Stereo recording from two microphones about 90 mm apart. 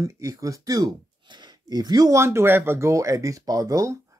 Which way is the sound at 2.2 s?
30° right (ahead or behind).